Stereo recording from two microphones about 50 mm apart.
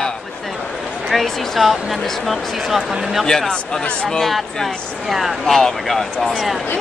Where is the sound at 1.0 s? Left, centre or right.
Centre.